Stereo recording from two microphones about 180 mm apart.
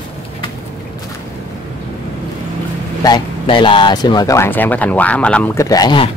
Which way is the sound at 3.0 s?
25° left (ahead or behind).